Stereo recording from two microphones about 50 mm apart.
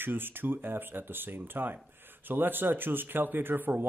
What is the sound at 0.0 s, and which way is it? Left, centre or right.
Speech, right.